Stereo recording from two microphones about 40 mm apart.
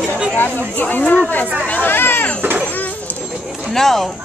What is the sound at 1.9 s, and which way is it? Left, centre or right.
Vehicle, left.